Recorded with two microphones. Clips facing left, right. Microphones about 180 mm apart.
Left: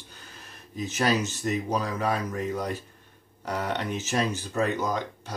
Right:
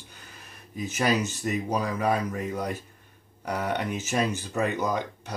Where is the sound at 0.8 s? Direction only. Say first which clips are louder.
Even; 10° right (ahead or behind).